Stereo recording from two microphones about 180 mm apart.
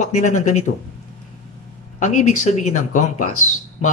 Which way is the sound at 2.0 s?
45° left (ahead or behind).